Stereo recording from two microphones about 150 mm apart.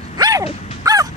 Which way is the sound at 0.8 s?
25° right (ahead or behind).